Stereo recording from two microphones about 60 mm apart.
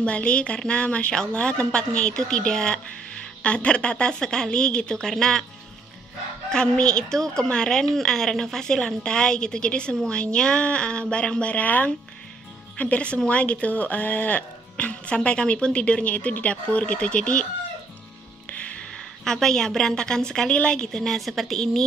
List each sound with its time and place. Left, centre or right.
0.0 s a woman's voice: centre
6.5 s a woman's voice: centre
18.6 s a sound: left
19.2 s a woman's voice: centre